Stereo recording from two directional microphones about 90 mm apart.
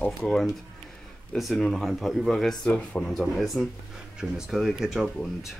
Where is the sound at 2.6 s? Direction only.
10° left (ahead or behind); by 5.0 s 5° right (ahead or behind).